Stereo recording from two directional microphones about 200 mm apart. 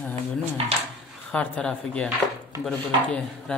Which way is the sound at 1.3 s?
5° left (ahead or behind).